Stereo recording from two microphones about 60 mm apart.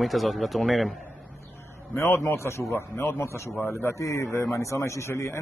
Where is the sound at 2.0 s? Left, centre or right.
Left.